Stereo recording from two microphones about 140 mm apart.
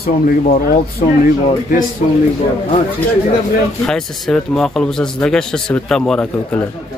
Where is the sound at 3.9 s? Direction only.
5° left (ahead or behind).